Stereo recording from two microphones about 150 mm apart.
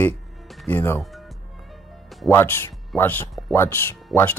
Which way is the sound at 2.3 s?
15° left (ahead or behind).